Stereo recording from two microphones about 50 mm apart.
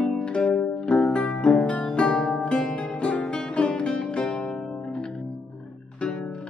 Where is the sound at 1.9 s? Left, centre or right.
Centre.